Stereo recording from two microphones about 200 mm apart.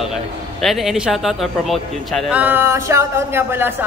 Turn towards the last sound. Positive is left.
turn(degrees=-10)  # may be behind; listen again after turning